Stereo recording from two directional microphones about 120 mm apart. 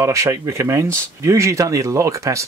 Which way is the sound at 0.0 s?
25° right (ahead or behind).